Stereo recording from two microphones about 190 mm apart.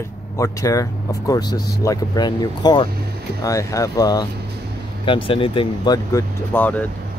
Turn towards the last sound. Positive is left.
turn(degrees=10)  # may be behind; listen again after turning